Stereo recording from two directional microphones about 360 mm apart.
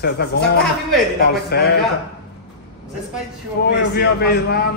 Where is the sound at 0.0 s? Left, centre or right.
Left.